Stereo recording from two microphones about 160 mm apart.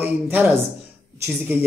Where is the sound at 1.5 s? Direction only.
10° right (ahead or behind).